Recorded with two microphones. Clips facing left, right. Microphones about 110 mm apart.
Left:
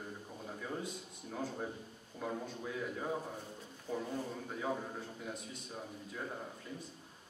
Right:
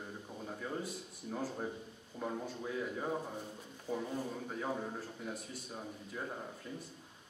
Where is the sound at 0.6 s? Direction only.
5° right (ahead or behind).